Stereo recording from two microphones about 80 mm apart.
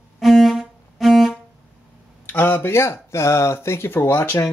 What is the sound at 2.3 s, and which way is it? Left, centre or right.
Speech, left.